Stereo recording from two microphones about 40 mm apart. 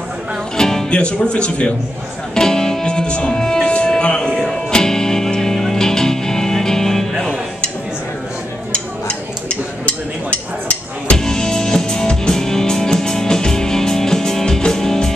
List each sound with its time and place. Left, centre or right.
0.6 s music: centre
0.8 s speech: left
2.3 s music: centre
8.7 s tick-tock: left
11.1 s music: centre